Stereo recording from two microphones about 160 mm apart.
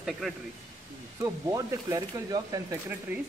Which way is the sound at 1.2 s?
20° right (ahead or behind).